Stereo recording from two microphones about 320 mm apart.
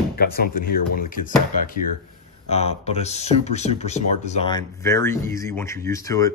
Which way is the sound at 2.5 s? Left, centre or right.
Centre.